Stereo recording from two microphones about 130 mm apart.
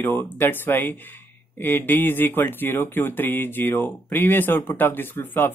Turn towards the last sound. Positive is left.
turn(degrees=15)  # may be behind; listen again after turning